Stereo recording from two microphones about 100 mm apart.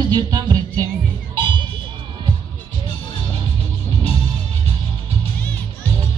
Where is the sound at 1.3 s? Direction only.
50° right (ahead or behind).